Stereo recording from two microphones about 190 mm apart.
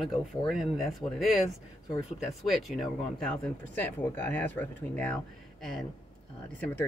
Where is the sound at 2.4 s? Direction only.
Centre (ahead or behind).